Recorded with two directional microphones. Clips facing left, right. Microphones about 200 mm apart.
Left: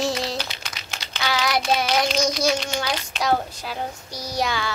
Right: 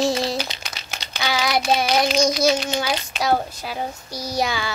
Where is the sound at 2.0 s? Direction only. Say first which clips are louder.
Right 3 dB; 10° right (ahead or behind).